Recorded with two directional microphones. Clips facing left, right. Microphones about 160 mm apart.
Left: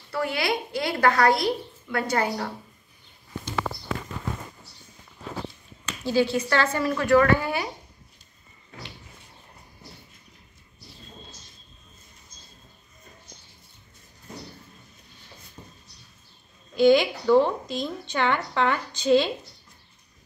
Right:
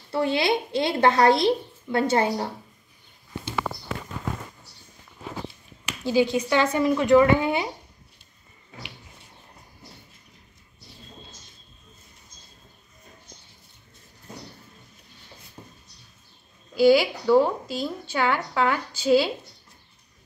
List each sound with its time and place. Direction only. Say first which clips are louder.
0.1 s a woman's voice: right 4 dB; 25° right (ahead or behind)
6.0 s a woman's voice: right 1 dB; 15° right (ahead or behind)
15.6 s a sound: right 1 dB; 20° right (ahead or behind)
16.7 s speech: even; 5° right (ahead or behind)